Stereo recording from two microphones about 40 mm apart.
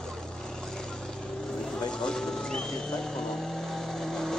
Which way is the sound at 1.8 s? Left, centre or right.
Centre.